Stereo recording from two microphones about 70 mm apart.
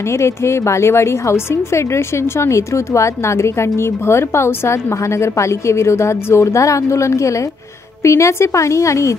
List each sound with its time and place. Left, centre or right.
0.2 s a woman's voice: left